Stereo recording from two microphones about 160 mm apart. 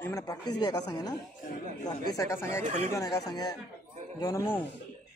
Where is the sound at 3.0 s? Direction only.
25° left (ahead or behind).